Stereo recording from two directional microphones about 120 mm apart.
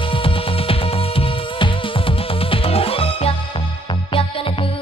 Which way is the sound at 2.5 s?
50° left (ahead or behind).